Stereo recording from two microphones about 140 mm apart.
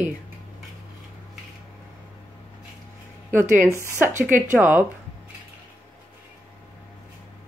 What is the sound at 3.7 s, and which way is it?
Speech, 20° right (ahead or behind).